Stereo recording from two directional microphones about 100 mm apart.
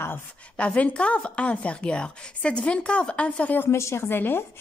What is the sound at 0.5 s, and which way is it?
A woman's voice, 10° left (ahead or behind).